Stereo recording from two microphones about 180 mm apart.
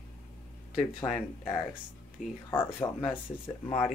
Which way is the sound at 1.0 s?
10° left (ahead or behind).